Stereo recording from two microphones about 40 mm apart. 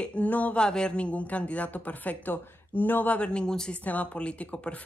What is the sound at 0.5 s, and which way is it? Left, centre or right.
Speech, left.